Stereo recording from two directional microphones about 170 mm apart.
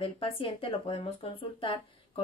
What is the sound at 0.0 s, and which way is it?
Speech, 30° left (ahead or behind).